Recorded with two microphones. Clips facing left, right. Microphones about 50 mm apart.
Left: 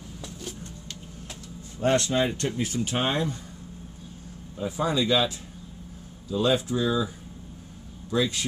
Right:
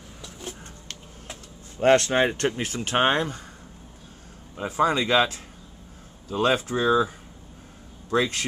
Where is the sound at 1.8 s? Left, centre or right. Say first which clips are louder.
Right 4 dB; right.